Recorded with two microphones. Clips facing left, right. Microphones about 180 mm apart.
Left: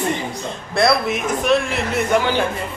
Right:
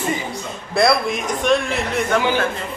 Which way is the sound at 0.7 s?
Centre (ahead or behind).